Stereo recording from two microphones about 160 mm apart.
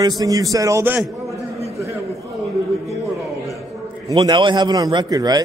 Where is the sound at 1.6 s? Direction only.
20° right (ahead or behind).